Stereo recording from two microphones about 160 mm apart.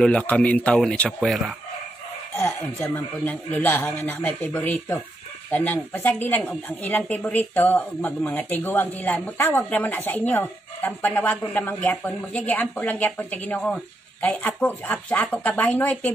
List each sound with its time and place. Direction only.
0.0 s speech: 10° left (ahead or behind)